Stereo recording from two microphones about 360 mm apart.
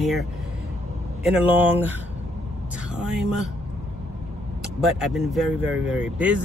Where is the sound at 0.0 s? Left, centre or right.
Centre.